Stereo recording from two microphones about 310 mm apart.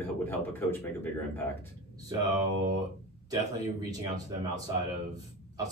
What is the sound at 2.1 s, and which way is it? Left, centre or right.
Speech, centre.